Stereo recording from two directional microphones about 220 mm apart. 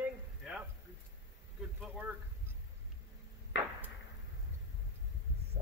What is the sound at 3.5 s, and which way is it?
Chop, 60° left (ahead or behind).